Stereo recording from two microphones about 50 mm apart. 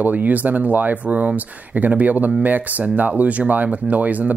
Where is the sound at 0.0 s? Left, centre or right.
Right.